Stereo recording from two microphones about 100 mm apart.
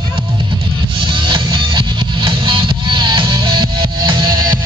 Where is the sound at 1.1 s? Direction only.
55° right (ahead or behind).